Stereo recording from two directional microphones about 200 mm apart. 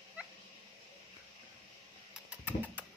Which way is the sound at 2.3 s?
10° right (ahead or behind).